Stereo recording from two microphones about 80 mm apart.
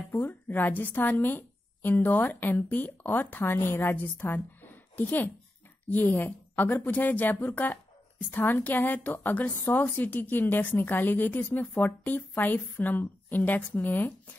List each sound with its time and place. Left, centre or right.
0.1 s a woman's voice: left